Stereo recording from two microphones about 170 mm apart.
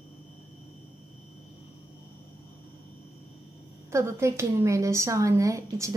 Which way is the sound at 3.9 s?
15° right (ahead or behind).